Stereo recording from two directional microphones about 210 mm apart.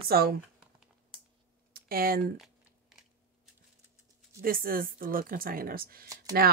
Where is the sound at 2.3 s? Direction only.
Centre (ahead or behind).